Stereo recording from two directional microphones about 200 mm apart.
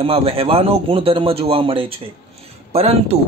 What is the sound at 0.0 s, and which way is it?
Speech, 30° right (ahead or behind).